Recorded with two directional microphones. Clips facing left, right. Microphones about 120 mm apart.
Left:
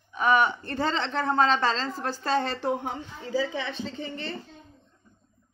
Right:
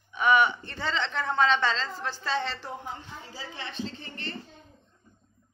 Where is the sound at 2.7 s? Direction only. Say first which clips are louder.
Left 9 dB; 90° left.